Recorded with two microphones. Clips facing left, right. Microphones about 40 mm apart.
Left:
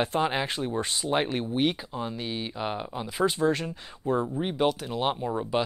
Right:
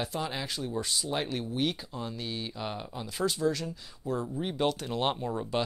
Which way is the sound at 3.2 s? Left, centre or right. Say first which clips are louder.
Left 4 dB; left.